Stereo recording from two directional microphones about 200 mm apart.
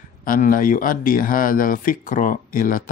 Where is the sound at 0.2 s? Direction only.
45° left (ahead or behind).